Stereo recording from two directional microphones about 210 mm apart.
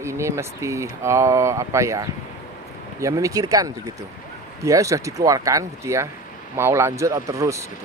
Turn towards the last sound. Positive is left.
turn(degrees=-15)  # may be behind; listen again after turning